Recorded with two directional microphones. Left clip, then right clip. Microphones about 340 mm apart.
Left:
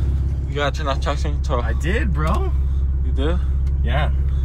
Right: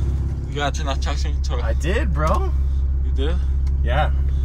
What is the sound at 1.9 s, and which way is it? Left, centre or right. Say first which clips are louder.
Speech: right 2 dB; right.